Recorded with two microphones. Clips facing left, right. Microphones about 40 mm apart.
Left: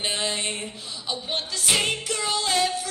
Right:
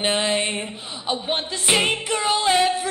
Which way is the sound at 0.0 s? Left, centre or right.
Right.